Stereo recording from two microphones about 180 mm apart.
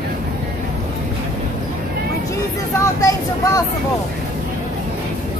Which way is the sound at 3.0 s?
20° left (ahead or behind).